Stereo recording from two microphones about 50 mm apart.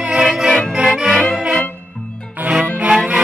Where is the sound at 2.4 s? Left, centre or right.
Right.